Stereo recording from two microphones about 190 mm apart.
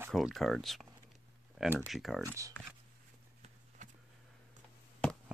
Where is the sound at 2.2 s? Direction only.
15° right (ahead or behind).